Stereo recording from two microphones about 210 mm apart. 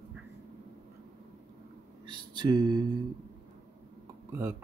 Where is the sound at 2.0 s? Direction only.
20° right (ahead or behind).